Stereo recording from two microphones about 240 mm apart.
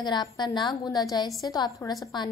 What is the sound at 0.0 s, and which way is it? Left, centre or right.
A woman's voice, centre.